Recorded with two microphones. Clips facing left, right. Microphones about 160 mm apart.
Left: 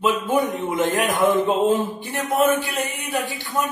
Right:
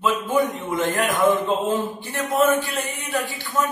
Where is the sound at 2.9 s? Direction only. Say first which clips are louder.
Left 1 dB; 20° left (ahead or behind).